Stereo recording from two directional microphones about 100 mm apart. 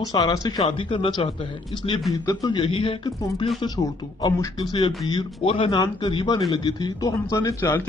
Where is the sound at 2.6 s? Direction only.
65° left (ahead or behind).